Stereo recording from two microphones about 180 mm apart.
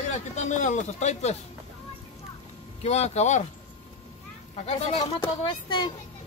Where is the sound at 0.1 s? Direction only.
40° left (ahead or behind).